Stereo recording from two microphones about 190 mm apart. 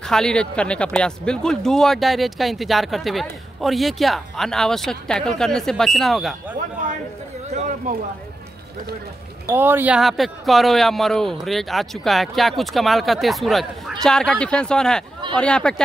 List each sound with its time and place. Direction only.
0.0 s speech: 5° left (ahead or behind)
7.5 s a sound: 40° right (ahead or behind)
9.5 s speech: 10° right (ahead or behind); by 15.7 s 5° left (ahead or behind)